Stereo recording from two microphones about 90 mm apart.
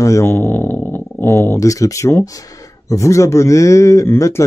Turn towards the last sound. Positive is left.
turn(degrees=30)  # may be behind; listen again after turning